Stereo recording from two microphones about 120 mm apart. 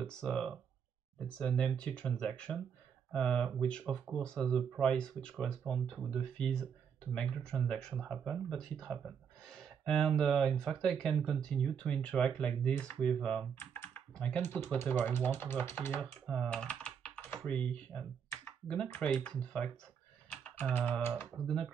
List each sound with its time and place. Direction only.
0.0 s speech: 5° left (ahead or behind)
16.3 s typing: 5° left (ahead or behind)
17.5 s speech: 10° left (ahead or behind)
20.2 s typing: 5° left (ahead or behind)